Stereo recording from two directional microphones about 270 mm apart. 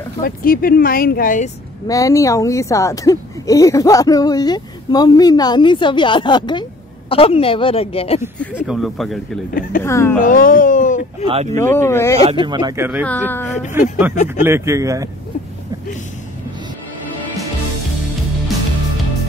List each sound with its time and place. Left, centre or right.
0.2 s speech: left
1.9 s a woman's voice: centre
8.4 s speech: centre
9.5 s speech: left
9.8 s speech: centre
10.1 s speech: left
11.5 s speech: centre
12.4 s speech: centre
13.0 s speech: centre
13.8 s speech: centre
14.1 s a woman's voice: left
14.4 s speech: centre